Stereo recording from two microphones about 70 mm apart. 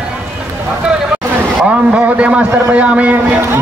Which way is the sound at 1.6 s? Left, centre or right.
Centre.